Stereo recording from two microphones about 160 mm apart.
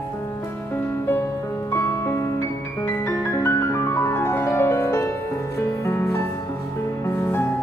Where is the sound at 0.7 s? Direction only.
15° left (ahead or behind).